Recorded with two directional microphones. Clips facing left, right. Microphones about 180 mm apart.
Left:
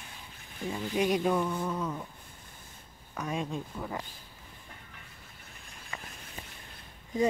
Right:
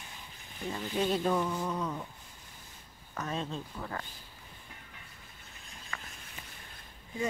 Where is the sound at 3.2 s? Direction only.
10° left (ahead or behind).